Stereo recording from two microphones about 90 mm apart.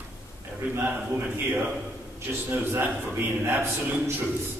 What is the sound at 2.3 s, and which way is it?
A man's voice, 25° right (ahead or behind).